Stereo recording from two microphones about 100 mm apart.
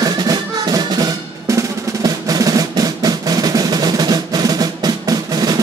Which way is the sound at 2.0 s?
40° right (ahead or behind).